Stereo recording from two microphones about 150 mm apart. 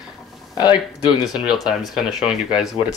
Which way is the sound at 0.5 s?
25° left (ahead or behind).